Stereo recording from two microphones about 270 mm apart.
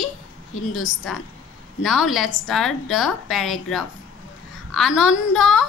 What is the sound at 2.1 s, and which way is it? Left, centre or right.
A woman's voice, centre.